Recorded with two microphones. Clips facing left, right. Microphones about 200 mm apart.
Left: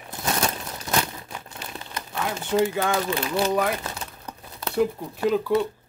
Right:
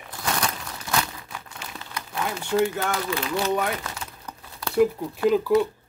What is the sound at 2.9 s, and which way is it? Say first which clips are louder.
Speech: left 2 dB; 30° left (ahead or behind).